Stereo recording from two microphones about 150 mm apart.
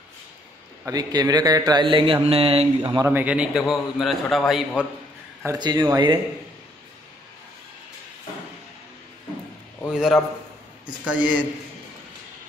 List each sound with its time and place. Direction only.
0.8 s a man's voice: 25° right (ahead or behind)
2.8 s a man's voice: 25° right (ahead or behind)
3.1 s a man's voice: 10° right (ahead or behind)
5.6 s a man's voice: 25° right (ahead or behind)
9.8 s a man's voice: 5° right (ahead or behind)